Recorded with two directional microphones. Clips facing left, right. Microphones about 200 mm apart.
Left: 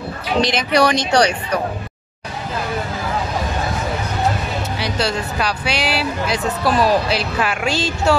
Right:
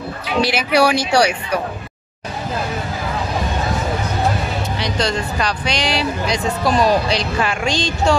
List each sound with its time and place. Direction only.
0.4 s speech: 5° right (ahead or behind)
4.7 s speech: 5° left (ahead or behind)